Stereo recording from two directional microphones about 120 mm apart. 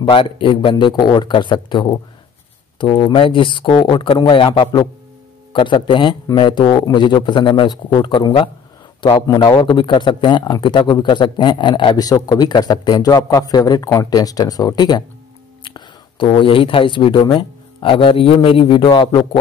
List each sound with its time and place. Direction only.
0.0 s a man's voice: 45° left (ahead or behind)
9.1 s a man's voice: 30° left (ahead or behind)